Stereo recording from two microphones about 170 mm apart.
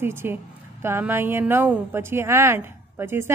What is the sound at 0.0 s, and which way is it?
A woman's voice, 15° right (ahead or behind).